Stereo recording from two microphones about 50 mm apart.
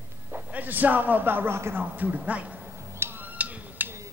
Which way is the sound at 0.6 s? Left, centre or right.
Right.